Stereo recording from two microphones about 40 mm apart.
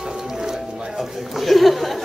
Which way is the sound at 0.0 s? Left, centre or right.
Centre.